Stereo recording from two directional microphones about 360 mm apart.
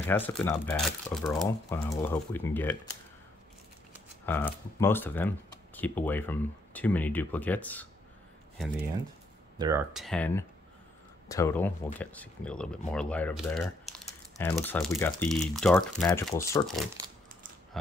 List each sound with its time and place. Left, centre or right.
0.0 s speech: centre
4.3 s speech: centre
9.6 s speech: centre